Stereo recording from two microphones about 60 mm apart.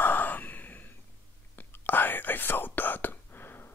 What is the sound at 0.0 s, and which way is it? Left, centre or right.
Sigh, left.